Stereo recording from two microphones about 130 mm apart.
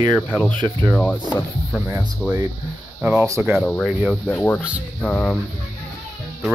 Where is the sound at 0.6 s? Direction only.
35° right (ahead or behind).